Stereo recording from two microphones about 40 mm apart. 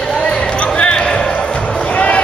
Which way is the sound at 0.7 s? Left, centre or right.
Left.